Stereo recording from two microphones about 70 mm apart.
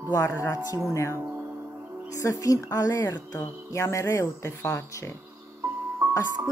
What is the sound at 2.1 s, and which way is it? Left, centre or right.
Speech, left.